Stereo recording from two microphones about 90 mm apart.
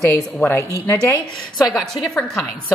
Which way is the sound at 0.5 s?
25° left (ahead or behind).